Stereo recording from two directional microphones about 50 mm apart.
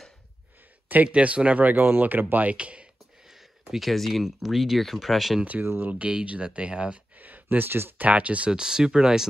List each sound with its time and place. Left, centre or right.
1.0 s speech: right
1.8 s speech: right
2.5 s speech: right
3.3 s speech: centre
5.9 s speech: right
7.2 s a sound: right
8.0 s speech: right
8.5 s speech: centre